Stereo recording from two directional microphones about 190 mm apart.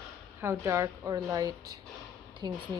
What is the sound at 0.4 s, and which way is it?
A woman's voice, 15° right (ahead or behind).